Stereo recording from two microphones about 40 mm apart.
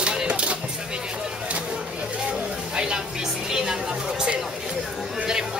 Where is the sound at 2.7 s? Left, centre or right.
Centre.